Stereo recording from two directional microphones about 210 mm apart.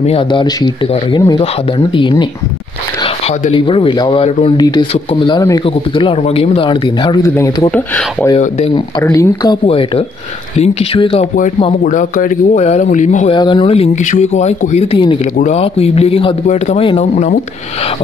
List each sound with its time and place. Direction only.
0.0 s speech: 25° left (ahead or behind)
3.3 s speech: 25° left (ahead or behind); by 8.4 s 10° left (ahead or behind)
8.4 s speech: 30° left (ahead or behind)
9.0 s speech: 15° left (ahead or behind)
11.8 s speech: 40° left (ahead or behind)
13.3 s speech: 25° left (ahead or behind)